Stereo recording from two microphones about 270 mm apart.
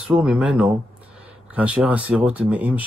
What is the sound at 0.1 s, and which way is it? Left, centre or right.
Speech, centre.